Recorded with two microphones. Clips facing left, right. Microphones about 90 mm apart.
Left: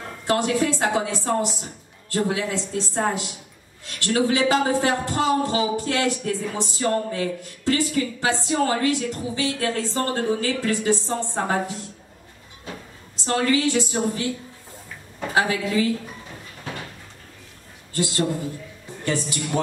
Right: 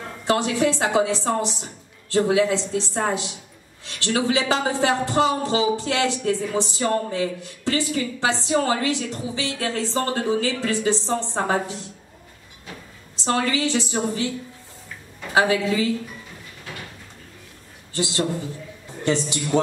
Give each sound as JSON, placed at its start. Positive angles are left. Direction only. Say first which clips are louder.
{"t": 0.3, "sound": "a man's voice", "louder": "right 1 dB", "side_deg": -25}
{"t": 13.1, "sound": "a man's voice", "louder": "left 1 dB", "side_deg": -20}
{"t": 15.3, "sound": "a man's voice", "louder": "right 2 dB", "side_deg": -20}
{"t": 17.9, "sound": "a man's voice", "louder": "left 1 dB", "side_deg": -25}